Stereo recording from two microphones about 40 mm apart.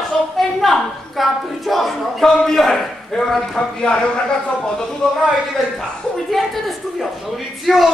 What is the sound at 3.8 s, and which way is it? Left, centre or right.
Speech, left.